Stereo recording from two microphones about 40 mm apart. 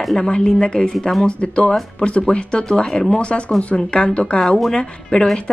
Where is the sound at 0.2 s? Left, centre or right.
Left.